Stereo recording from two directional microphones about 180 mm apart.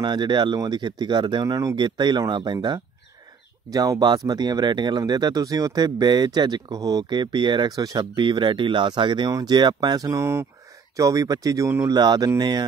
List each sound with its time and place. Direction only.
0.0 s speech: 25° right (ahead or behind)